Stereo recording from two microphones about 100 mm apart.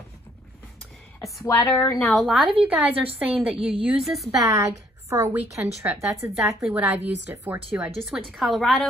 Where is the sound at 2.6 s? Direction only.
15° right (ahead or behind).